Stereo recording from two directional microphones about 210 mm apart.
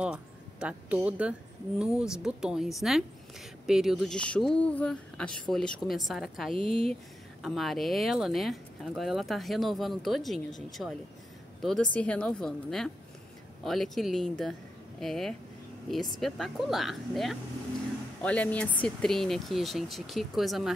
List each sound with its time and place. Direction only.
0.0 s a woman's voice: 5° right (ahead or behind)
6.5 s speech: 25° right (ahead or behind)
7.4 s a woman's voice: centre (ahead or behind)